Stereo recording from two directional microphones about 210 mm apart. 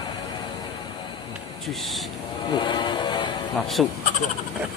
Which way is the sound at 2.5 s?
20° left (ahead or behind).